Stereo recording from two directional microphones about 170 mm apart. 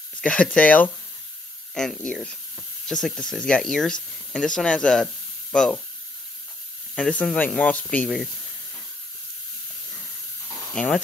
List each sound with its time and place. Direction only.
0.2 s speech: 5° left (ahead or behind)
7.0 s speech: 5° left (ahead or behind)
10.7 s speech: 5° left (ahead or behind)